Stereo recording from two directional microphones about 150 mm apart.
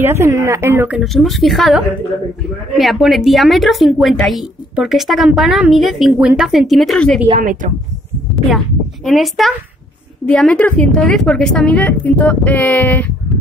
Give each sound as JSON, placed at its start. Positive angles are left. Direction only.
{"t": 0.0, "sound": "speech", "side_deg": -20}
{"t": 1.0, "sound": "speech", "side_deg": 0}
{"t": 7.2, "sound": "speech", "side_deg": -55}
{"t": 8.5, "sound": "a woman's voice", "side_deg": 0}